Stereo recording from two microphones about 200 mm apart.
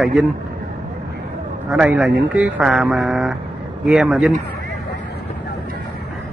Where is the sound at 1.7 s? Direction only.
5° right (ahead or behind).